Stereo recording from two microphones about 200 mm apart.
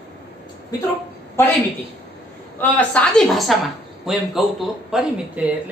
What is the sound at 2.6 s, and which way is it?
Speech, 5° left (ahead or behind).